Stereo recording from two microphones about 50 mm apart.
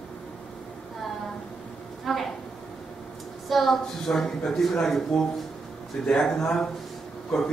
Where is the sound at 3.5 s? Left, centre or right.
Centre.